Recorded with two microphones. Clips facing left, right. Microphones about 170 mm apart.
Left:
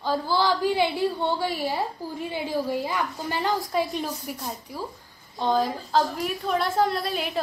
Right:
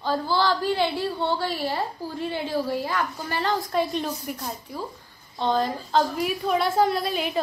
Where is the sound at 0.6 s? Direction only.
15° left (ahead or behind).